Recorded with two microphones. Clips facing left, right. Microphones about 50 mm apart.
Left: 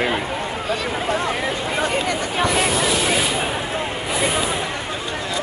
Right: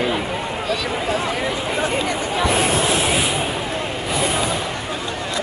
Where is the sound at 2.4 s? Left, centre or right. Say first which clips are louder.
Right 1 dB; right.